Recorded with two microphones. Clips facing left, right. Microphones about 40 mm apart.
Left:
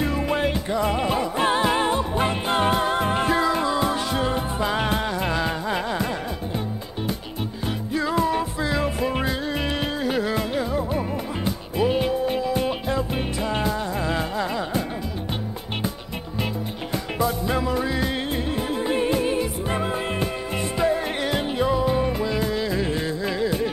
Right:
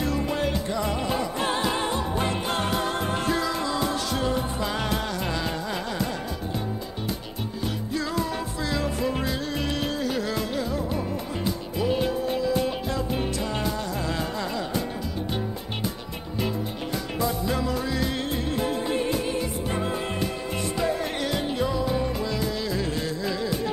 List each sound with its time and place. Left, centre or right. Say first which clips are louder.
0.0 s music: left 3 dB; left
7.9 s music: left 7 dB; left
17.2 s music: left 3 dB; left